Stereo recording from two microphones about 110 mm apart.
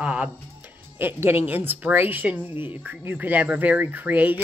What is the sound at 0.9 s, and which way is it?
Speech, 20° right (ahead or behind).